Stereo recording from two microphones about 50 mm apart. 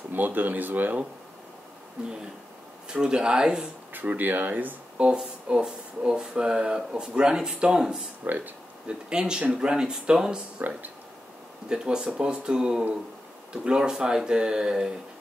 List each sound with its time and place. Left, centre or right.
0.1 s speech: right
2.9 s speech: centre
3.9 s speech: right
4.9 s speech: centre
8.2 s speech: right
8.8 s speech: centre
11.7 s speech: centre